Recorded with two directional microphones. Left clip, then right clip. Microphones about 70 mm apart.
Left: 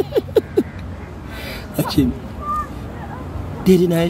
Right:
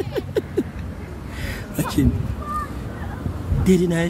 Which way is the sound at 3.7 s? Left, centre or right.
Centre.